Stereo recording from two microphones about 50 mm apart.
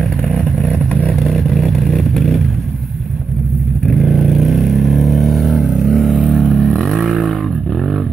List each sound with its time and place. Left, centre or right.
0.2 s vehicle: centre
1.1 s vehicle: centre
3.8 s vehicle: centre